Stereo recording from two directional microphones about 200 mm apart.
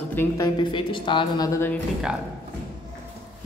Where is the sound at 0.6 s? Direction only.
25° left (ahead or behind).